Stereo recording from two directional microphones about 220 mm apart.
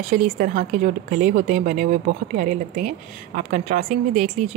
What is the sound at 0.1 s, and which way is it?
A woman's voice, 35° right (ahead or behind).